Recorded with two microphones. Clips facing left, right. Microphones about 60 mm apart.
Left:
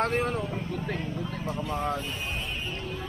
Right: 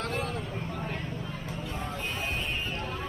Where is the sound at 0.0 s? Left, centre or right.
Left.